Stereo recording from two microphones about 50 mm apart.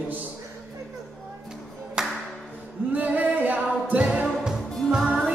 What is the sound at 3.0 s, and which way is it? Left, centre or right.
Music, right.